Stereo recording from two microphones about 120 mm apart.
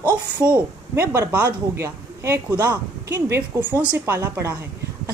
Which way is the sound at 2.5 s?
10° right (ahead or behind).